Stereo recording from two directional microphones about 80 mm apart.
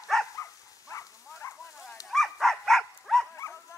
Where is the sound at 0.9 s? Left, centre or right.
Left.